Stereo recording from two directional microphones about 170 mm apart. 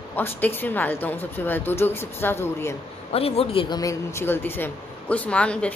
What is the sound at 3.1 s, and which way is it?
Speech, 35° left (ahead or behind).